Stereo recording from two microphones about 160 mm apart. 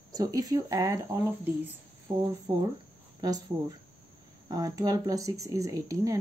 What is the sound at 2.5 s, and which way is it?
Speech, 30° right (ahead or behind).